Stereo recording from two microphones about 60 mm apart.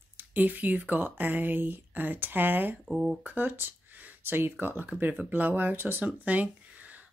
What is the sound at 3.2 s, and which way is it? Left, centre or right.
Speech, right.